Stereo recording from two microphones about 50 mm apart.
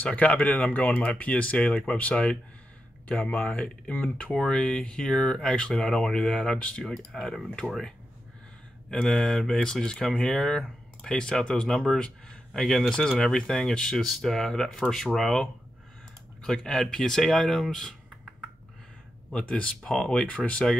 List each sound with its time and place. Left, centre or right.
0.1 s speech: left
3.3 s speech: left; by 7.3 s centre
7.6 s speech: left
8.9 s speech: centre
16.4 s speech: centre
19.3 s speech: left